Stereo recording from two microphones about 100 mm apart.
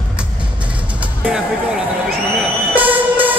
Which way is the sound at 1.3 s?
5° right (ahead or behind).